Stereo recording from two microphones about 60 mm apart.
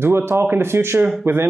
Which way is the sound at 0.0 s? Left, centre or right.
Right.